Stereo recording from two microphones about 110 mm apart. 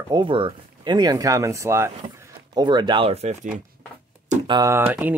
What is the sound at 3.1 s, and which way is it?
Speech, 85° right.